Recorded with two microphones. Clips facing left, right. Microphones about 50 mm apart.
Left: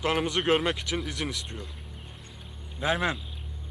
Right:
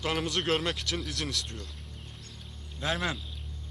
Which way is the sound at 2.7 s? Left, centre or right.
Centre.